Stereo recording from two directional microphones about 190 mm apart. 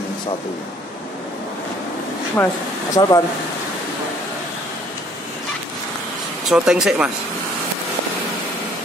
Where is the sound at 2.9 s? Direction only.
20° left (ahead or behind).